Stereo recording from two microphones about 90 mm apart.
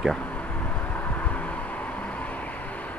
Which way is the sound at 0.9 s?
20° left (ahead or behind).